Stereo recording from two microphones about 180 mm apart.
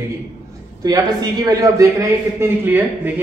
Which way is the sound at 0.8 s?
20° right (ahead or behind).